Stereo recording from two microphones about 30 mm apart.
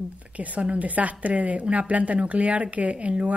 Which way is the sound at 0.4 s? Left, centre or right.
Right.